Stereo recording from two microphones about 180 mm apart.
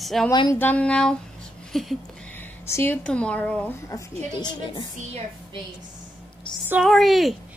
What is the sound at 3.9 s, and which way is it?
Speech, 25° left (ahead or behind).